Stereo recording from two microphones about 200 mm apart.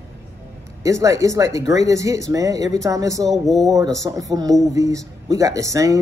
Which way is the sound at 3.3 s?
Centre (ahead or behind).